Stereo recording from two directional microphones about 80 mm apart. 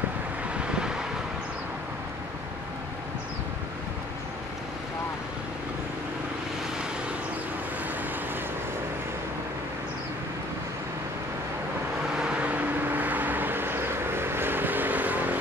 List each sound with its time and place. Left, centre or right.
0.6 s vehicle: centre
12.2 s vehicle: centre